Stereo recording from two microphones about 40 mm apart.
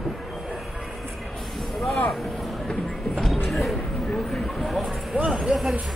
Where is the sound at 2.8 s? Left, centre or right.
Centre.